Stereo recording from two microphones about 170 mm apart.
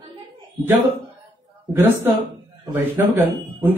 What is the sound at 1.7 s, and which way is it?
Speech, 10° right (ahead or behind).